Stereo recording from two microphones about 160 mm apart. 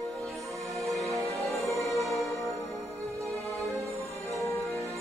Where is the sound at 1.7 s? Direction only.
Centre (ahead or behind).